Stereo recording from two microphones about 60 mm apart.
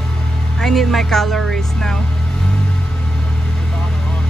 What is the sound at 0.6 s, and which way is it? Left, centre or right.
Speech, centre.